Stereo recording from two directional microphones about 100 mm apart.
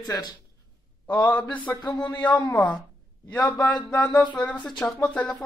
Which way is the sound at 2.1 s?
40° left (ahead or behind).